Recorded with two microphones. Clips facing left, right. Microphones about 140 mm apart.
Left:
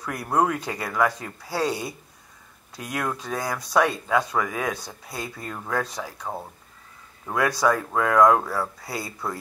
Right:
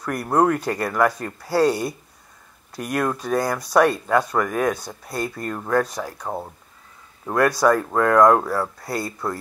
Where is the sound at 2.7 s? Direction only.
65° right (ahead or behind).